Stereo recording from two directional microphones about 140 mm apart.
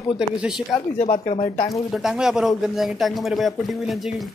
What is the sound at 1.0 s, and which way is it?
Speech, 50° left (ahead or behind).